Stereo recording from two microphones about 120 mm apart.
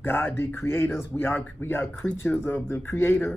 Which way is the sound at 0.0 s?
15° left (ahead or behind).